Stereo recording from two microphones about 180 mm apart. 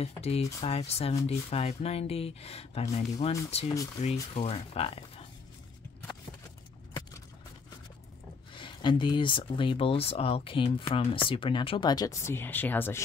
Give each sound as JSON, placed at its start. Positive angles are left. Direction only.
{"t": 0.0, "sound": "speech", "side_deg": 35}
{"t": 8.5, "sound": "speech", "side_deg": 25}